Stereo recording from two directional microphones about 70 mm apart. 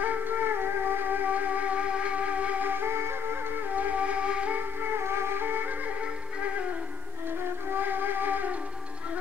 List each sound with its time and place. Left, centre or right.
0.0 s music: right
3.7 s music: right
4.9 s music: right
7.7 s music: right